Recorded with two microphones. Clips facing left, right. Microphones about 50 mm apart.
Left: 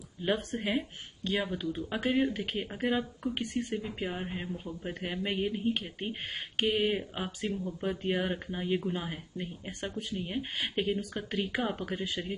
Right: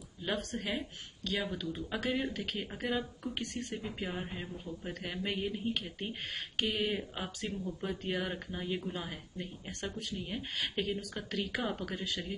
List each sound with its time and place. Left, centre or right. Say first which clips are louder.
0.2 s speech: left 5 dB; left
1.5 s speech: left 4 dB; centre